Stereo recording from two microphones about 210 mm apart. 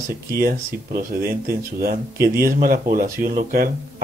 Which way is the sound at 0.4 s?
45° right (ahead or behind).